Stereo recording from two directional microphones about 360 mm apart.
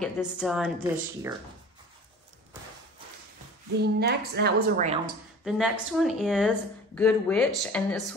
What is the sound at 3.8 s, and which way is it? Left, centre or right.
A woman's voice, right.